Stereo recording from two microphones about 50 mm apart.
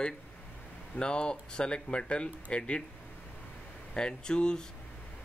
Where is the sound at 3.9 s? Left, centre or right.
Centre.